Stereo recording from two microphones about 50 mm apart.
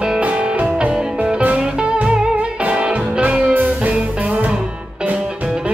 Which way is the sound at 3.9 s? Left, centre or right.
Right.